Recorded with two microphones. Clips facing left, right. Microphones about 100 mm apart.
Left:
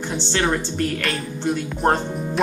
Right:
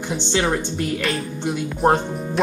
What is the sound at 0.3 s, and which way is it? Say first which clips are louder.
Speech: right 1 dB; 10° right (ahead or behind).